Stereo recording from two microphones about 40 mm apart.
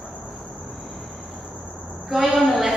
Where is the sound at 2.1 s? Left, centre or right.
Centre.